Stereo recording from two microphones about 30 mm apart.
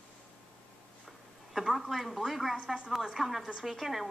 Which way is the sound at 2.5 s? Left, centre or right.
Right.